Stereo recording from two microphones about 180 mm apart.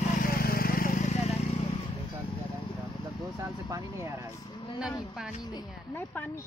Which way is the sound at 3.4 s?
15° right (ahead or behind).